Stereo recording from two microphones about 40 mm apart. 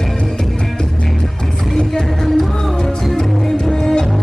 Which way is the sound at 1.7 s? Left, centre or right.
Centre.